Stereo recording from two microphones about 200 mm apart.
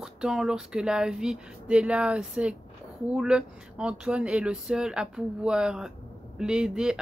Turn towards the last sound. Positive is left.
turn(degrees=-5)  # may be behind; listen again after turning